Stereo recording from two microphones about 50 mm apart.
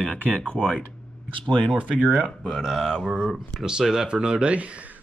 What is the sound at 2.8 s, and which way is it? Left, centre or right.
Speech, centre.